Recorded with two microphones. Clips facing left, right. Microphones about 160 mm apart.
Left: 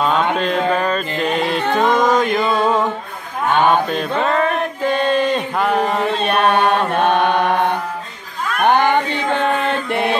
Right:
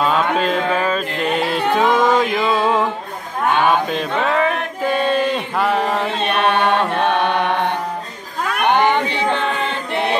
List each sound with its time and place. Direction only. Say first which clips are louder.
0.0 s music: even; centre (ahead or behind)
3.6 s mantra: left 1 dB; centre (ahead or behind)
6.2 s chant: left 2 dB; 45° left (ahead or behind)
7.2 s mantra: left 2 dB; 5° left (ahead or behind)
8.5 s a sound: left 1 dB; 45° left (ahead or behind)